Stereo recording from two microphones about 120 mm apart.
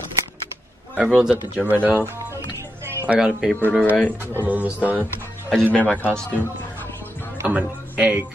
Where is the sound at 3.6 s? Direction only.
15° left (ahead or behind).